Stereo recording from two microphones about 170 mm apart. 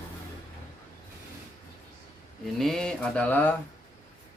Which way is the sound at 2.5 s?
Centre (ahead or behind).